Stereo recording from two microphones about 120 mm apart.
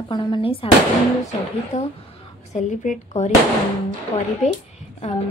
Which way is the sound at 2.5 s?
90° left.